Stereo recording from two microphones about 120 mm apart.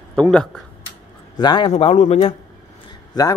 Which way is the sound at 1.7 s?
65° left (ahead or behind).